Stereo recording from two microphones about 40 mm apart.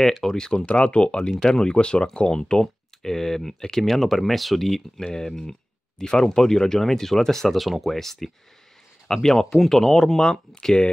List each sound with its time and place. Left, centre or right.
0.2 s speech: centre